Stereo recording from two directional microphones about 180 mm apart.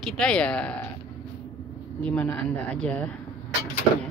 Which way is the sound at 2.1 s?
5° left (ahead or behind).